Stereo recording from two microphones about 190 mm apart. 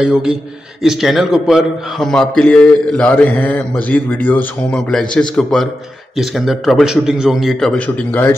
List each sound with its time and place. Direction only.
0.0 s a man's voice: 5° right (ahead or behind)